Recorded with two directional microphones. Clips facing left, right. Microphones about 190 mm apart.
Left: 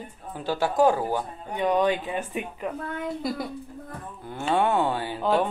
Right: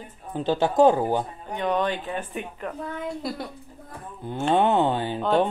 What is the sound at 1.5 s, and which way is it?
Speech, 10° left (ahead or behind).